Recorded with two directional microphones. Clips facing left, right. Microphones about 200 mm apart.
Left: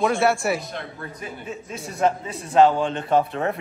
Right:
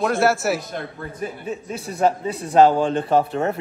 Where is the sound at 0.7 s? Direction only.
45° right (ahead or behind).